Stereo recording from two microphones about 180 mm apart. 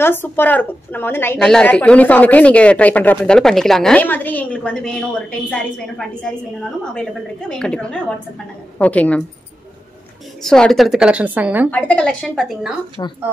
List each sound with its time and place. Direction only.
0.0 s a woman's voice: 10° left (ahead or behind)
10.4 s a woman's voice: 5° left (ahead or behind)
11.7 s a woman's voice: 5° left (ahead or behind)
13.0 s speech: 25° left (ahead or behind)